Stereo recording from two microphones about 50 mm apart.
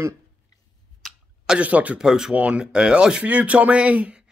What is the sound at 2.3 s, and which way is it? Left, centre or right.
Speech, right.